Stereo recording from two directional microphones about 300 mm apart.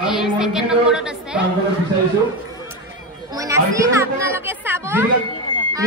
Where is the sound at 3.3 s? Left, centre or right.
Centre.